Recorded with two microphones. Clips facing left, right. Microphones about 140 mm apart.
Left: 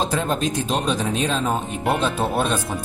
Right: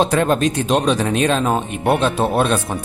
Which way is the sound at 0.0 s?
70° right (ahead or behind).